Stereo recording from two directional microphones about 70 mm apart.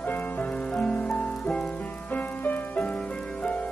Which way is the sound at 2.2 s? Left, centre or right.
Left.